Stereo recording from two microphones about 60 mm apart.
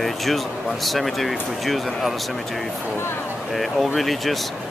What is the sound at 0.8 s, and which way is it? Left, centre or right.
Speech, centre.